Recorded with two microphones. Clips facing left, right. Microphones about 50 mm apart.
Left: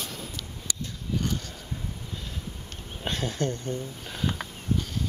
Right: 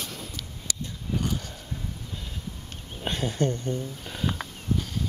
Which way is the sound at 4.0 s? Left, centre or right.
Centre.